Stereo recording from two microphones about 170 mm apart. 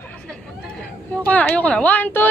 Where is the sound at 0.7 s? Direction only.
5° left (ahead or behind).